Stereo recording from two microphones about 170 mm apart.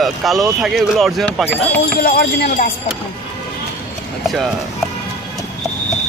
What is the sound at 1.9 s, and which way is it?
Speech, 65° left (ahead or behind).